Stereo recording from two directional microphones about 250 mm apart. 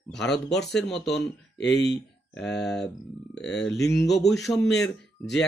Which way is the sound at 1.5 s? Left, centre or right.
Left.